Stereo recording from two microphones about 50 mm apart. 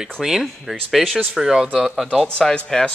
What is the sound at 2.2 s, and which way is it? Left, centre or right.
Speech, centre.